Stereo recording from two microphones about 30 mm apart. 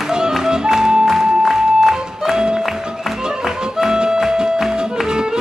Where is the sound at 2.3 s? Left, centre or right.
Right.